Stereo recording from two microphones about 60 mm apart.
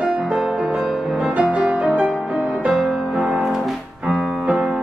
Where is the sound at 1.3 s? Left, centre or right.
Right.